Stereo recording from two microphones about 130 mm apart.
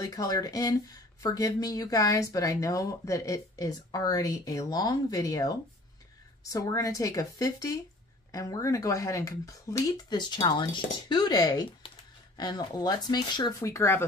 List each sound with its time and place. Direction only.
0.0 s speech: 30° left (ahead or behind)
6.5 s speech: 25° left (ahead or behind)
11.8 s a sound: 45° left (ahead or behind)
12.4 s speech: 30° left (ahead or behind)
13.6 s speech: 25° left (ahead or behind)